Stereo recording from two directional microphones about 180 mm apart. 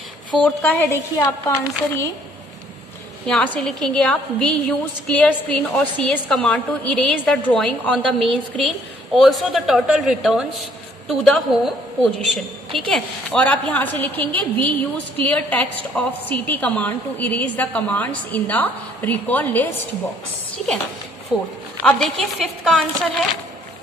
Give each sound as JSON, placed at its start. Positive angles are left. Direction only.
{"t": 0.4, "sound": "a woman's voice", "side_deg": 10}
{"t": 3.3, "sound": "a woman's voice", "side_deg": 5}
{"t": 21.3, "sound": "a woman's voice", "side_deg": -5}